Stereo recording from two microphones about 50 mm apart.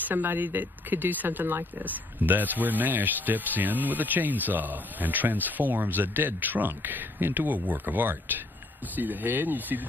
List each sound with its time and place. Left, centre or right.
0.0 s speech: right